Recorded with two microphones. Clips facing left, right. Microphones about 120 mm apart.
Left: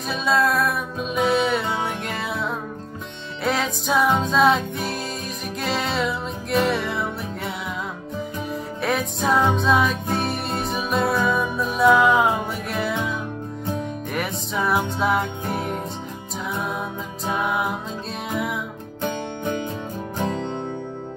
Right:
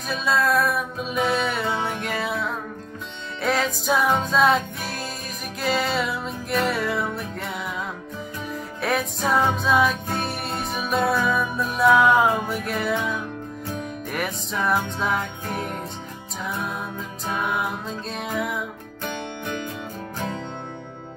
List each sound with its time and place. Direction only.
0.1 s music: centre (ahead or behind)
8.8 s music: centre (ahead or behind)
17.3 s music: centre (ahead or behind)
19.0 s music: 35° left (ahead or behind)
20.2 s music: 25° left (ahead or behind)